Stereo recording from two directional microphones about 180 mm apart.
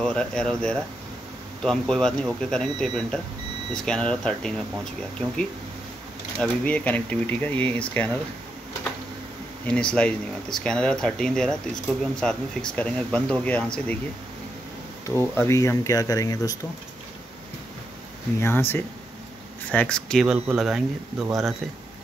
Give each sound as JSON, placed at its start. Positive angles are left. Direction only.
{"t": 0.0, "sound": "speech", "side_deg": 5}
{"t": 6.4, "sound": "speech", "side_deg": 5}
{"t": 9.7, "sound": "speech", "side_deg": 5}
{"t": 15.0, "sound": "speech", "side_deg": 15}
{"t": 18.4, "sound": "speech", "side_deg": 15}